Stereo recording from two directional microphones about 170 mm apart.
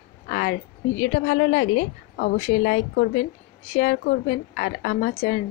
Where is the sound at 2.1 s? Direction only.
70° left (ahead or behind).